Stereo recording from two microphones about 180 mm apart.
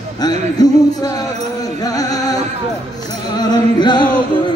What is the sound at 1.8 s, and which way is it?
Music, 20° left (ahead or behind).